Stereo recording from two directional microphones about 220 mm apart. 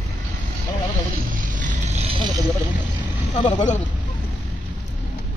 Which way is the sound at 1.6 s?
35° right (ahead or behind).